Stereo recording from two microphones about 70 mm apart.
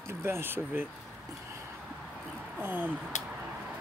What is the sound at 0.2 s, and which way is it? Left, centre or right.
Speech, right.